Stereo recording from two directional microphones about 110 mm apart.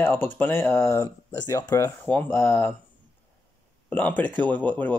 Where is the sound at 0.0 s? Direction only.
15° left (ahead or behind).